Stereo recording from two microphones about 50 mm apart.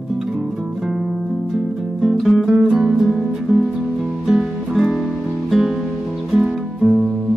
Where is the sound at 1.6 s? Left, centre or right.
Centre.